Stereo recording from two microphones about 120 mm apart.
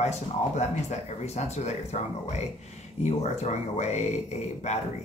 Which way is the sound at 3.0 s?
65° left (ahead or behind).